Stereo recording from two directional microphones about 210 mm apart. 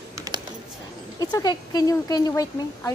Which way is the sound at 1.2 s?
20° left (ahead or behind).